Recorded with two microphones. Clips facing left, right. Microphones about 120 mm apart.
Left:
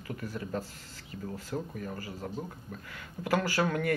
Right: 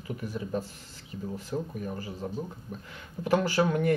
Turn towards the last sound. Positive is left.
turn(degrees=-20)  # may be behind; listen again after turning